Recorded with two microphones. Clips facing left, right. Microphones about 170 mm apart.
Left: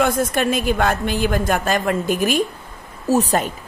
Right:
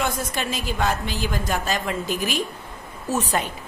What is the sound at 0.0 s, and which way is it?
A woman's voice, 55° left (ahead or behind).